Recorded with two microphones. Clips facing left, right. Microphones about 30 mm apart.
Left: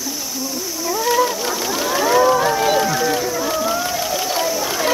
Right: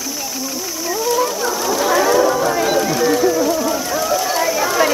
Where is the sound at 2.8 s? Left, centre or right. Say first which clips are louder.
Right 2 dB; centre.